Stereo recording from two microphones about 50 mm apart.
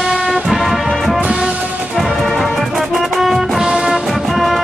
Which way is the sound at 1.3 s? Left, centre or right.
Centre.